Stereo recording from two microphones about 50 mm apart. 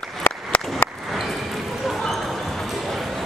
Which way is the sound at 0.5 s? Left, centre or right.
Left.